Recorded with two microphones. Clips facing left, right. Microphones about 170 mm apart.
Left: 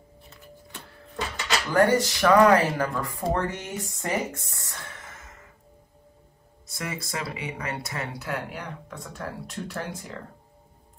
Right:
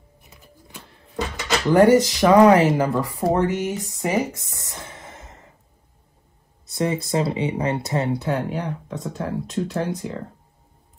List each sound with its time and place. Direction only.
1.7 s speech: 20° right (ahead or behind)
5.2 s music: 35° right (ahead or behind)
6.8 s speech: 30° right (ahead or behind)
8.2 s speech: 20° right (ahead or behind)